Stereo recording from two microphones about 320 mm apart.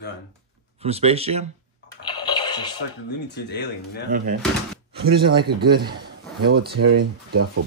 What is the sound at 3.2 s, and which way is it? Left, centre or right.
Speech, left.